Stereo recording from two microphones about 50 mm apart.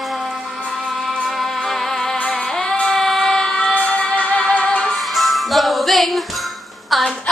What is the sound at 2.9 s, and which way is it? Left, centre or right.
Emergency vehicle, centre.